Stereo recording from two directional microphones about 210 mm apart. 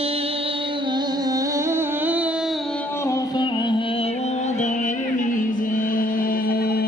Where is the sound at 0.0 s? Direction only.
30° right (ahead or behind); by 2.5 s 5° right (ahead or behind).